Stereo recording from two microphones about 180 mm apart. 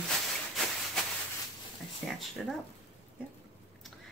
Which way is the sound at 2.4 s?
Centre (ahead or behind).